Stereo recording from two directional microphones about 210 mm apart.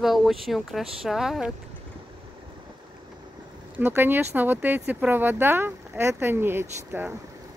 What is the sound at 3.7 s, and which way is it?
Speech, 10° right (ahead or behind).